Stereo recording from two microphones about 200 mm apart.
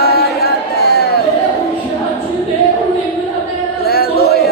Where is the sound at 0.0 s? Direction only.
50° left (ahead or behind).